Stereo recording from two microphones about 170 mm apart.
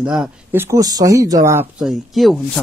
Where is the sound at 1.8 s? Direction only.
Centre (ahead or behind).